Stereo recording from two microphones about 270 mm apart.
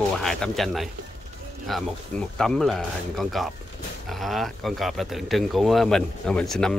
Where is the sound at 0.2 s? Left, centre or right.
Centre.